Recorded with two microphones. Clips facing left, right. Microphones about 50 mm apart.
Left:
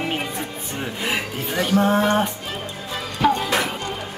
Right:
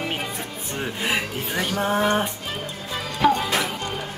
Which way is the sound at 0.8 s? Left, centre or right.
Centre.